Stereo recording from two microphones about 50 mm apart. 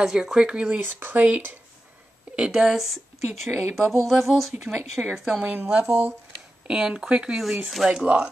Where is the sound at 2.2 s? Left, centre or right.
Centre.